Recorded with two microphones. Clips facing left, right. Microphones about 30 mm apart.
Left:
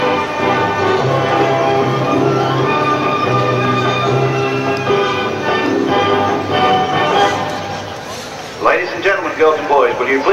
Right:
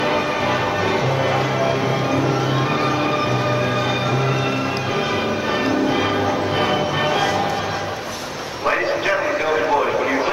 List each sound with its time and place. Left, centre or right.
0.0 s music: centre
0.8 s music: left
1.1 s music: left
7.1 s music: left
8.6 s a sound: left